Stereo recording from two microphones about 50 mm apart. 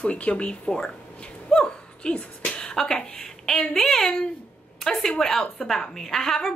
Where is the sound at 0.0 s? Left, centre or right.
Left.